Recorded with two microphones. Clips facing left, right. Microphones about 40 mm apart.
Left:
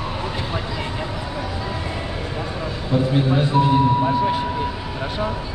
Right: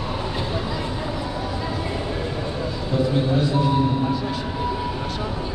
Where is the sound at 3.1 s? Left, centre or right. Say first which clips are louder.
Left 3 dB; left.